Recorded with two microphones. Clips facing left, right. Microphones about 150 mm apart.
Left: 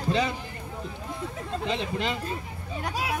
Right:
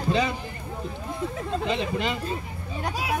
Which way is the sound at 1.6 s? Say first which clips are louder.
Right 1 dB; centre (ahead or behind).